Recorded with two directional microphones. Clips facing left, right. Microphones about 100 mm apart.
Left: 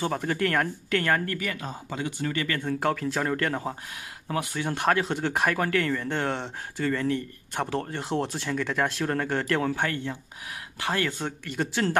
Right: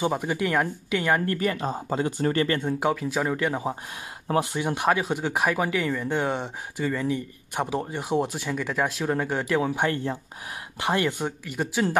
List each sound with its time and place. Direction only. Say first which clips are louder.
0.0 s speech: right 1 dB; 10° right (ahead or behind)
1.2 s speech: right 6 dB; 30° right (ahead or behind)
2.6 s speech: right 1 dB; 10° right (ahead or behind)
4.3 s speech: right 6 dB; 25° right (ahead or behind)
4.6 s speech: right 1 dB; 15° right (ahead or behind)